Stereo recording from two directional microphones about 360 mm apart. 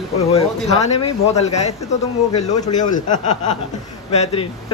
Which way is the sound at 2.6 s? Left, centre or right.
Centre.